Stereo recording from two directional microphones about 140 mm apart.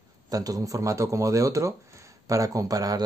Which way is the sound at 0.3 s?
25° right (ahead or behind).